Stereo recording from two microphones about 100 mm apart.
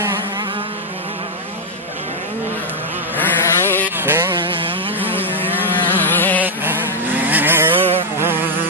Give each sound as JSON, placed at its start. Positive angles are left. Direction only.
{"t": 3.2, "sound": "a sound", "side_deg": 20}
{"t": 4.0, "sound": "a sound", "side_deg": -20}
{"t": 5.1, "sound": "vehicle", "side_deg": 20}
{"t": 5.9, "sound": "music", "side_deg": 20}
{"t": 6.4, "sound": "vehicle", "side_deg": -20}
{"t": 8.2, "sound": "insect", "side_deg": -20}